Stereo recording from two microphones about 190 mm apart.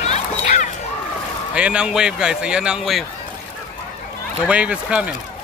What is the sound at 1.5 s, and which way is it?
A man's voice, 5° right (ahead or behind).